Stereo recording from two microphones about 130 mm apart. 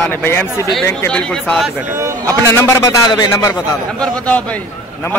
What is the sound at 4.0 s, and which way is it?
Speech, 10° left (ahead or behind).